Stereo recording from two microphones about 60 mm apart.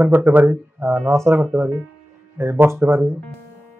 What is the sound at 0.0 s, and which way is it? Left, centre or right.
Speech, right.